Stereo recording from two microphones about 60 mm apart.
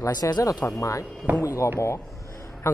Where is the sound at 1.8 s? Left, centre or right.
Left.